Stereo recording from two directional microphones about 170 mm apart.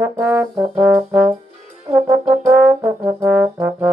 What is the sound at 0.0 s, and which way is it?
Brass instrument, 15° right (ahead or behind).